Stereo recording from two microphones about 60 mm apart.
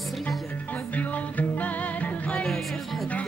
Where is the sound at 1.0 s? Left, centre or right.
Left.